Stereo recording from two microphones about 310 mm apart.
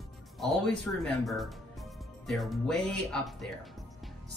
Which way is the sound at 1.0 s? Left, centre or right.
Centre.